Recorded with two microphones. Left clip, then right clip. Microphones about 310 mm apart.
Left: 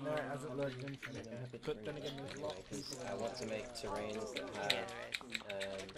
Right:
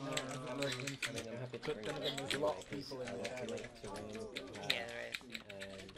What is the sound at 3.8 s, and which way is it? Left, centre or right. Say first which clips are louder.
Speech: left 5 dB; left.